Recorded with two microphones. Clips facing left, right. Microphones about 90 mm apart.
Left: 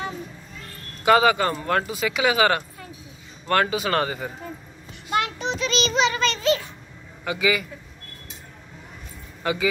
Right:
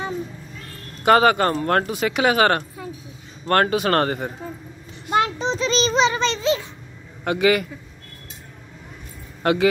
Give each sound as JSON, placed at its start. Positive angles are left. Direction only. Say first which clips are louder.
{"t": 1.0, "sound": "speech", "louder": "right 2 dB", "side_deg": -50}
{"t": 5.1, "sound": "child singing", "louder": "right 4 dB", "side_deg": -30}
{"t": 7.2, "sound": "speech", "louder": "right 5 dB", "side_deg": -55}
{"t": 9.4, "sound": "speech", "louder": "right 6 dB", "side_deg": -60}